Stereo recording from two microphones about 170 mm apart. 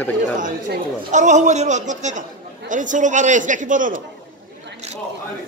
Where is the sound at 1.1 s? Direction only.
45° right (ahead or behind).